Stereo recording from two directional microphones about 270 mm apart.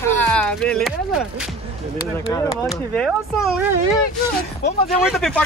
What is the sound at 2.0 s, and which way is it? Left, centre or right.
Speech, centre.